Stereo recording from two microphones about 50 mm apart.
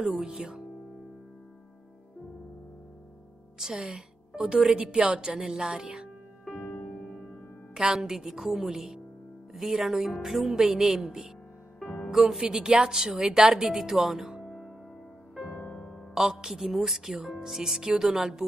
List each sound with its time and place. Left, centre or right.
0.2 s speech: centre
3.5 s a woman's voice: centre
6.4 s music: centre
7.7 s speech: centre
11.8 s music: centre
12.1 s speech: centre
14.4 s music: centre
15.9 s music: centre
16.3 s speech: centre